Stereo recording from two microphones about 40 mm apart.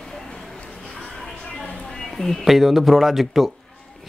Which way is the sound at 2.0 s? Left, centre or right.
Centre.